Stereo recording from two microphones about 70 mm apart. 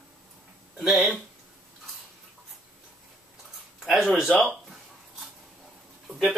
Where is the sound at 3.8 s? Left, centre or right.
Centre.